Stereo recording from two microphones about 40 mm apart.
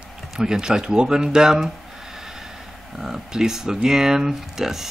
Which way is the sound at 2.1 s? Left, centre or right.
Centre.